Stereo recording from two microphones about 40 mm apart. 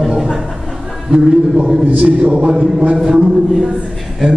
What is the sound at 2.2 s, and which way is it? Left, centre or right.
Mantra, right.